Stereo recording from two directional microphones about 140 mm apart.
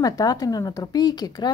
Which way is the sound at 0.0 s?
25° left (ahead or behind).